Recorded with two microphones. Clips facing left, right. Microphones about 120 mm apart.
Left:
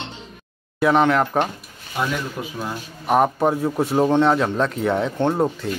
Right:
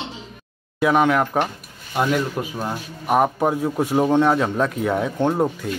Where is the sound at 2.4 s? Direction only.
50° right (ahead or behind).